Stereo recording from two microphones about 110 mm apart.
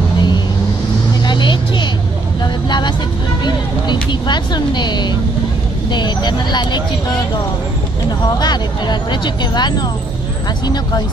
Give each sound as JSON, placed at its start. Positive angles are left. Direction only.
{"t": 1.2, "sound": "vehicle", "side_deg": 45}
{"t": 3.4, "sound": "music", "side_deg": 40}
{"t": 5.9, "sound": "speech", "side_deg": 40}
{"t": 8.4, "sound": "speech", "side_deg": 40}